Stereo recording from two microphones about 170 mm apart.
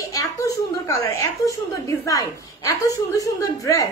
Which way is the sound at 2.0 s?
20° left (ahead or behind).